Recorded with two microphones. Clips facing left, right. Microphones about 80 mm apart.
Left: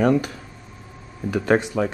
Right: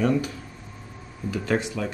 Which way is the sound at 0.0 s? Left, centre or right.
Left.